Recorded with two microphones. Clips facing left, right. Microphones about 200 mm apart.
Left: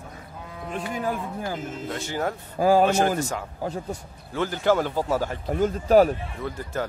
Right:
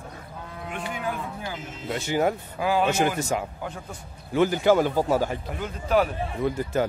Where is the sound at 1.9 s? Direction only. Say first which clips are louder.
Right 5 dB; 15° right (ahead or behind).